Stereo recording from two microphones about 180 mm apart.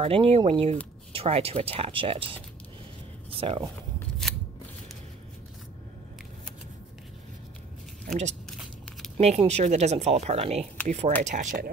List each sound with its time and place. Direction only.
0.0 s speech: 35° right (ahead or behind)
4.2 s scissors: centre (ahead or behind)
8.5 s a sound: centre (ahead or behind)
9.2 s speech: 35° right (ahead or behind)